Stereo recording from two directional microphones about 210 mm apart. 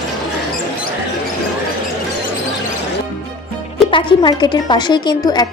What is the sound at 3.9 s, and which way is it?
A woman's voice, 20° left (ahead or behind).